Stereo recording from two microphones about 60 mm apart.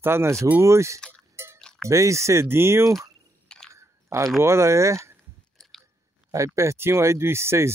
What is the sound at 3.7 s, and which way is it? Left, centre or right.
Chewing, right.